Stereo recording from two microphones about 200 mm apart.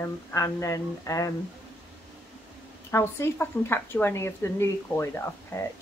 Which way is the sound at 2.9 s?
10° left (ahead or behind).